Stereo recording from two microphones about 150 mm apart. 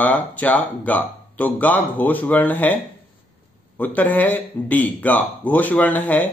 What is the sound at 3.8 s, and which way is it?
Speech, 10° left (ahead or behind).